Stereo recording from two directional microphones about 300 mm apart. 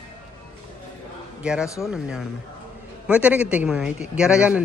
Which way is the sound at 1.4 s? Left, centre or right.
Centre.